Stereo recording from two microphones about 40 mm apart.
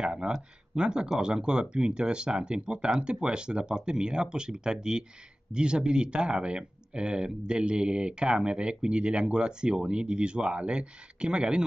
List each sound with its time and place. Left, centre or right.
0.0 s speech: right